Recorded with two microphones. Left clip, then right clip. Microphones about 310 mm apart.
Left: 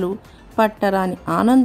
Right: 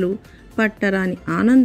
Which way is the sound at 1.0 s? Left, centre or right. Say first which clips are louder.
Left 2 dB; left.